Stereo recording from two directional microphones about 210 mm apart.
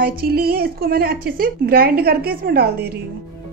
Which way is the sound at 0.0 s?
45° right (ahead or behind).